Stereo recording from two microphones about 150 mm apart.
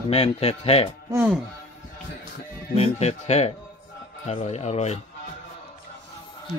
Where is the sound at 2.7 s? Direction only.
45° left (ahead or behind).